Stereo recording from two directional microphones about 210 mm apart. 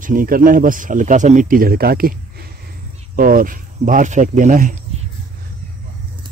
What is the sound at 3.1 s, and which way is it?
Speech, 40° right (ahead or behind).